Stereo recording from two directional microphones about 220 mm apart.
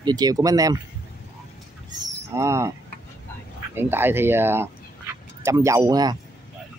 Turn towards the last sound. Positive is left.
turn(degrees=-15)  # may be behind; listen again after turning